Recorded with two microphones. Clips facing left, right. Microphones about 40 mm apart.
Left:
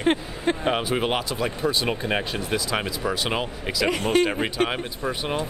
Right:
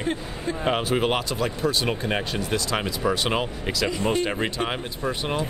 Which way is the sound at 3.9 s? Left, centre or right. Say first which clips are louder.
Left 5 dB; left.